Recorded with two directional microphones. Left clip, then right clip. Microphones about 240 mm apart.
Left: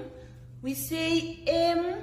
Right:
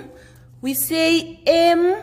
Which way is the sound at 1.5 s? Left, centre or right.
Right.